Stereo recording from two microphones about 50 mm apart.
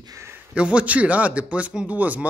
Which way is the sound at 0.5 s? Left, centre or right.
Right.